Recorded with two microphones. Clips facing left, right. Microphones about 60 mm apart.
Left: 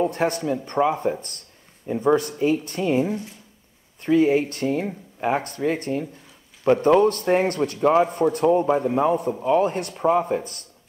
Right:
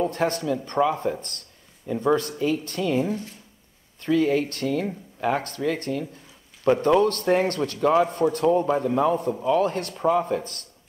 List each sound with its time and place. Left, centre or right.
0.0 s a man's voice: left
9.1 s a man's voice: centre
9.5 s a man's voice: left